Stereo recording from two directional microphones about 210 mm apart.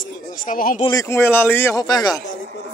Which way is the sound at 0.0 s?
40° left (ahead or behind).